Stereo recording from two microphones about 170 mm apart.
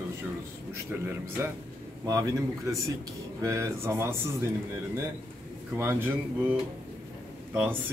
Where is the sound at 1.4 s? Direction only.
15° right (ahead or behind).